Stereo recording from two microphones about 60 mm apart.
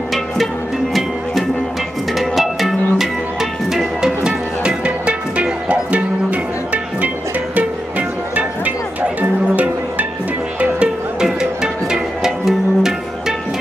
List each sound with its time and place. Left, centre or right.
2.1 s music: centre; by 7.1 s right
9.2 s music: right; by 12.9 s centre